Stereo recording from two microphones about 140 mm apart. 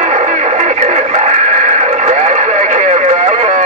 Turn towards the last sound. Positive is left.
turn(degrees=-50)  # may be behind; listen again after turning